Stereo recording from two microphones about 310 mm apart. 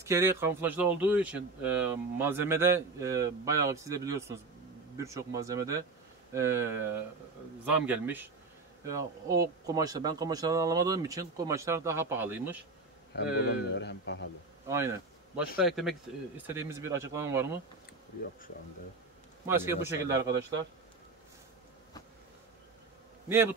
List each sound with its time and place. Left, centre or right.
0.0 s speech: centre
13.1 s speech: left
14.7 s speech: centre
19.4 s speech: centre
23.2 s bee: centre